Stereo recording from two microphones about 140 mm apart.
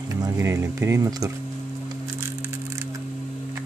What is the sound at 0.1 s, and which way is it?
Speech, 20° right (ahead or behind).